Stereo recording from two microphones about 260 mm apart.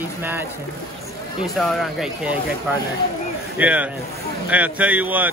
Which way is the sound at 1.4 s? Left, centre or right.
Centre.